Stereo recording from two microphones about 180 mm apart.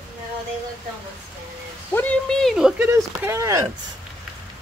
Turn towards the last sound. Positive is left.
turn(degrees=-15)  # may be behind; listen again after turning